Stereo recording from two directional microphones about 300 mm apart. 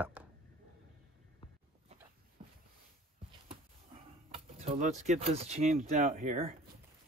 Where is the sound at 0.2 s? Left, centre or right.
Centre.